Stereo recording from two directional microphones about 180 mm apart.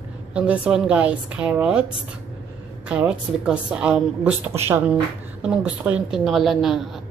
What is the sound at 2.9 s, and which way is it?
A woman's voice, 5° right (ahead or behind).